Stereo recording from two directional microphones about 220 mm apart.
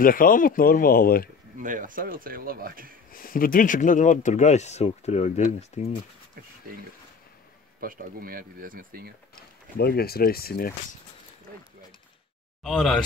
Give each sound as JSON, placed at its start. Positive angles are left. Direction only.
{"t": 0.0, "sound": "speech", "side_deg": 40}
{"t": 1.6, "sound": "speech", "side_deg": -35}
{"t": 3.1, "sound": "speech", "side_deg": 40}
{"t": 7.8, "sound": "speech", "side_deg": -40}
{"t": 9.8, "sound": "speech", "side_deg": 45}
{"t": 12.6, "sound": "speech", "side_deg": 0}